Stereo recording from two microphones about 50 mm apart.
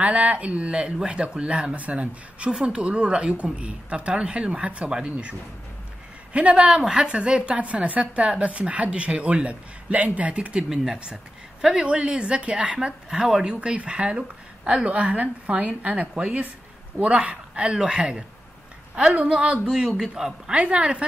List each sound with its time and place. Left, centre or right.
0.0 s a woman's voice: right
6.3 s a woman's voice: right
10.7 s a man's voice: centre
11.6 s a woman's voice: right
13.1 s a woman's voice: centre
20.0 s a man's voice: centre
20.5 s a woman's voice: right